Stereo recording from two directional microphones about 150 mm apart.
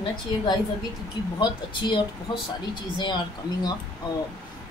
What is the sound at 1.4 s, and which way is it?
Speech, 30° left (ahead or behind).